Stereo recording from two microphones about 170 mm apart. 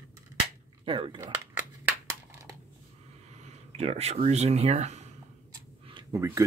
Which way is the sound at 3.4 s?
40° right (ahead or behind).